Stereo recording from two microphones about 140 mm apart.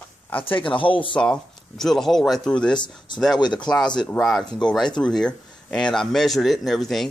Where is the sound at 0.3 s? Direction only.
10° left (ahead or behind).